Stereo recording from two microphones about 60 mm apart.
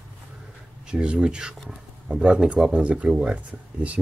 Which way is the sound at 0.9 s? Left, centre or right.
Centre.